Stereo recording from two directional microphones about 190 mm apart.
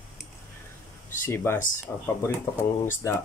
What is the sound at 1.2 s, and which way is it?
Speech, 10° left (ahead or behind).